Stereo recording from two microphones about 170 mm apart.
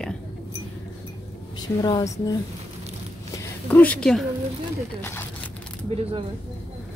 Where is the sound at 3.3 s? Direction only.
10° left (ahead or behind).